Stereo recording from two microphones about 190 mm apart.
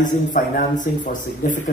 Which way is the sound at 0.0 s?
40° left (ahead or behind).